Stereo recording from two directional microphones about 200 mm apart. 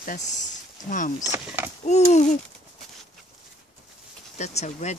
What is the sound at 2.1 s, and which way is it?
Speech, 35° left (ahead or behind).